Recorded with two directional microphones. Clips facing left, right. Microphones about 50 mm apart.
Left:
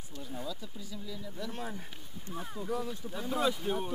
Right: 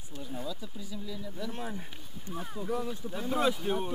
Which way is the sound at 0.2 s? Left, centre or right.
Centre.